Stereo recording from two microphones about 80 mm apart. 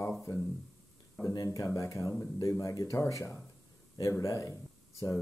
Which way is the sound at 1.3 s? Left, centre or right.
Left.